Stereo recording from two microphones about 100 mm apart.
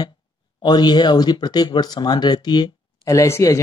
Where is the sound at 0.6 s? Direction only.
45° left (ahead or behind).